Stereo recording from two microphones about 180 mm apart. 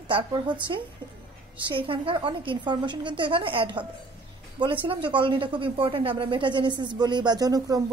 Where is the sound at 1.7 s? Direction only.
30° right (ahead or behind).